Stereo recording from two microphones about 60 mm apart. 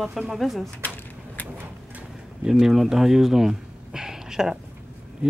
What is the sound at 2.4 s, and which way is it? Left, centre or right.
Speech, centre.